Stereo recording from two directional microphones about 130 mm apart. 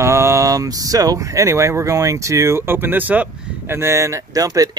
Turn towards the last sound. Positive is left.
turn(degrees=-25)  # may be behind; listen again after turning